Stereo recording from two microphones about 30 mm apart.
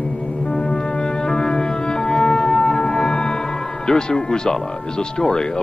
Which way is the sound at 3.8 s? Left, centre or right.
Left.